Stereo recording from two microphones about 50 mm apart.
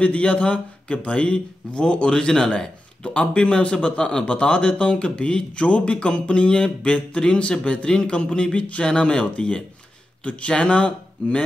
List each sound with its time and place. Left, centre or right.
0.0 s speech: left